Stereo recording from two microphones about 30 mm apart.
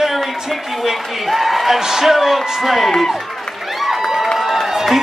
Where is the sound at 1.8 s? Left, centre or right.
Centre.